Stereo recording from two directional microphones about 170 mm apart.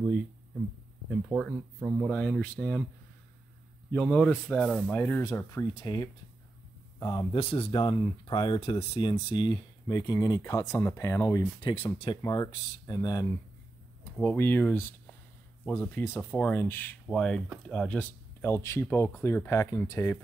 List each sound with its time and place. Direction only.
1.3 s speech: 5° right (ahead or behind)
2.0 s speech: 5° left (ahead or behind)
3.9 s speech: 5° left (ahead or behind); by 7.2 s 20° left (ahead or behind)
7.3 s speech: 35° left (ahead or behind); by 11.4 s 15° left (ahead or behind)
11.6 s speech: 30° left (ahead or behind)
12.2 s speech: 20° left (ahead or behind)